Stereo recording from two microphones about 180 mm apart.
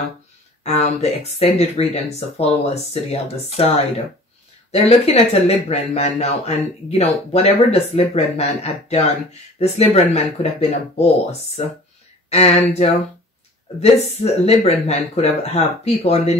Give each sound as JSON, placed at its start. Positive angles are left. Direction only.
{"t": 0.7, "sound": "speech", "side_deg": 35}
{"t": 12.3, "sound": "speech", "side_deg": 35}